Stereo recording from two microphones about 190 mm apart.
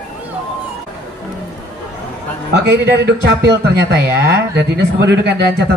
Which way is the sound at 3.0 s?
60° right (ahead or behind).